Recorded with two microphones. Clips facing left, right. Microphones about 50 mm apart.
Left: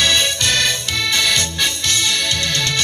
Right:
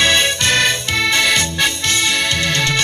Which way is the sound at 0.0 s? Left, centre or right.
Right.